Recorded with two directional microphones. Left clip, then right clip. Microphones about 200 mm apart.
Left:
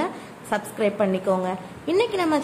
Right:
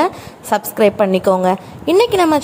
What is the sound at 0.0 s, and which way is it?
A woman's voice, 35° right (ahead or behind).